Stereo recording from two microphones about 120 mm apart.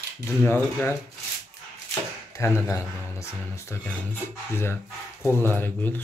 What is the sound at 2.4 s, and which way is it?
Speech, 25° left (ahead or behind).